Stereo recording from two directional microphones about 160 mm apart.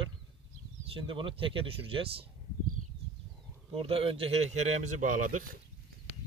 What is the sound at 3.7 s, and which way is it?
A man's voice, 35° right (ahead or behind).